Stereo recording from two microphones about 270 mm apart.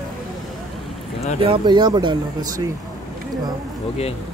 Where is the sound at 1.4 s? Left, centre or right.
Centre.